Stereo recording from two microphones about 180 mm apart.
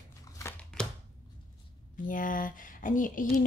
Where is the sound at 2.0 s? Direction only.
50° left (ahead or behind).